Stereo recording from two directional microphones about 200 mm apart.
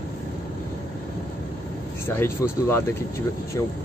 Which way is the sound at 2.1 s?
10° left (ahead or behind).